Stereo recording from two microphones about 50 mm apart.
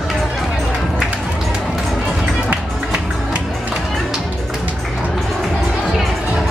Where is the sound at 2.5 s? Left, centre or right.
Right.